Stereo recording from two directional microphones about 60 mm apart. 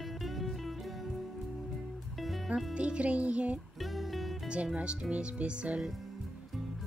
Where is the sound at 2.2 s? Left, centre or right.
Centre.